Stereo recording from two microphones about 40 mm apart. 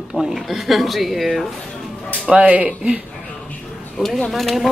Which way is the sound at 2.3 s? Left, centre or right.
Right.